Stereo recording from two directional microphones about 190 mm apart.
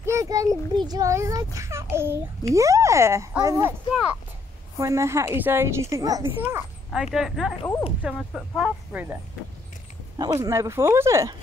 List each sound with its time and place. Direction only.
0.0 s a child's voice: 15° right (ahead or behind)
3.9 s a sound: 5° right (ahead or behind)
4.7 s a woman's voice: 15° right (ahead or behind)
10.1 s a woman's voice: 20° right (ahead or behind)